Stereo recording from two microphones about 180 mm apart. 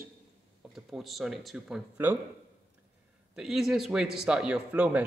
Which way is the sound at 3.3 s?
Centre (ahead or behind).